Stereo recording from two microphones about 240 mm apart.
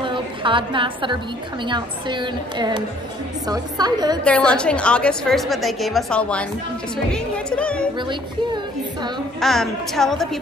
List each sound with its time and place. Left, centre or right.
0.0 s a woman's voice: right
4.2 s a woman's voice: centre
9.4 s a woman's voice: centre